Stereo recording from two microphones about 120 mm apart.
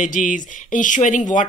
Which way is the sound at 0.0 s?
90° left.